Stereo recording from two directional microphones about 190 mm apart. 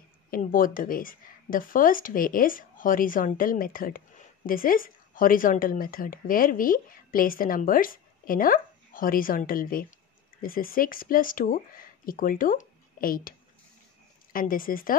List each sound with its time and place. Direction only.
0.3 s a woman's voice: 45° left (ahead or behind)
14.3 s a woman's voice: 50° left (ahead or behind)